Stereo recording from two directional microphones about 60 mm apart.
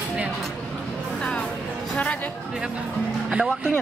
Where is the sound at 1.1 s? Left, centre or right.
Centre.